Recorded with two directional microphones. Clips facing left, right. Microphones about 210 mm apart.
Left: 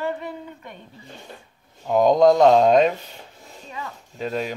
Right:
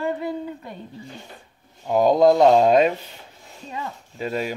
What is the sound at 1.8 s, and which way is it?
Speech, 5° right (ahead or behind).